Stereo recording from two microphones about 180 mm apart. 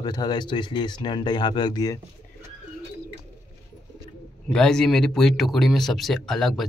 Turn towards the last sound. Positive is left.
turn(degrees=0)  # may be behind; listen again after turning